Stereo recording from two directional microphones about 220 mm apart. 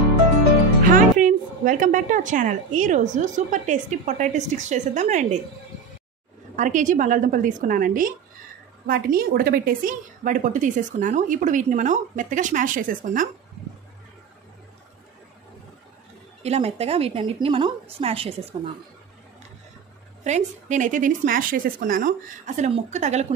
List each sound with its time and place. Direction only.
1.2 s a woman's voice: 35° right (ahead or behind)
6.5 s a woman's voice: 35° right (ahead or behind)
16.4 s a woman's voice: 30° right (ahead or behind)
20.2 s a woman's voice: 35° right (ahead or behind)